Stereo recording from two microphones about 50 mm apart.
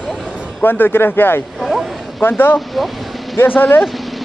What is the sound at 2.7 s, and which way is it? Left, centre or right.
Speech, centre.